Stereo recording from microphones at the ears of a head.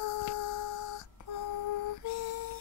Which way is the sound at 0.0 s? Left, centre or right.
Left.